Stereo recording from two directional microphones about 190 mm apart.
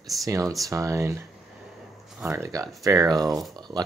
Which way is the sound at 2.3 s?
15° right (ahead or behind).